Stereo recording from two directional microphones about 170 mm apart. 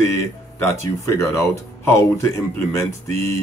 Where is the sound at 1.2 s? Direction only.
15° left (ahead or behind).